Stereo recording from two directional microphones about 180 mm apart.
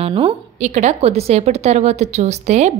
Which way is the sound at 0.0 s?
30° right (ahead or behind).